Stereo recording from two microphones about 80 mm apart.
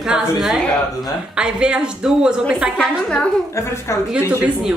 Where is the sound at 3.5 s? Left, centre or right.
Left.